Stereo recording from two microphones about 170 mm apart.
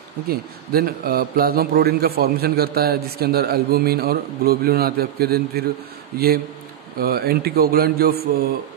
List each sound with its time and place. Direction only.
0.3 s a man's voice: 60° right (ahead or behind)